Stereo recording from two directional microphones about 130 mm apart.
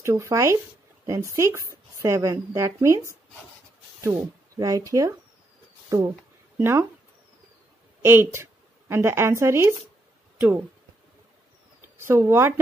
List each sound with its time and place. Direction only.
0.0 s speech: 20° right (ahead or behind)
8.0 s a woman's voice: 20° right (ahead or behind)
12.0 s speech: 20° right (ahead or behind)